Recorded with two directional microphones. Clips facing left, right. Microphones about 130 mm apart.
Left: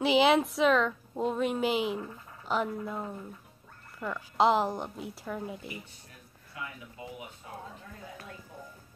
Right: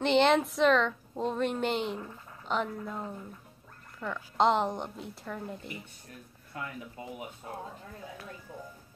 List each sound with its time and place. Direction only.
0.0 s a woman's voice: 5° left (ahead or behind)
6.5 s speech: 45° right (ahead or behind)